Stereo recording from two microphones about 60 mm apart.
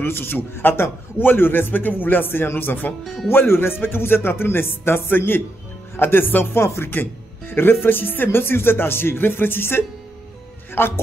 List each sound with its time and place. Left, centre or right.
0.0 s speech: left
6.6 s speech: left
6.9 s speech: left